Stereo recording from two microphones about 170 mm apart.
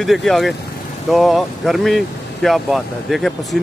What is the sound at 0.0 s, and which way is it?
Speech, centre (ahead or behind).